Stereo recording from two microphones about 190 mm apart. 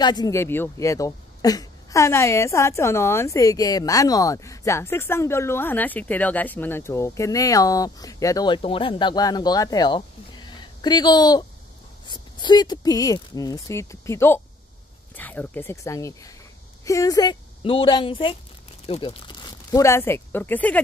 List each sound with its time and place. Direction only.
0.0 s speech: 20° left (ahead or behind)